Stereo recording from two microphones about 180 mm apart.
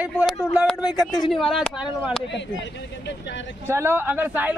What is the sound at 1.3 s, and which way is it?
Speech, centre (ahead or behind).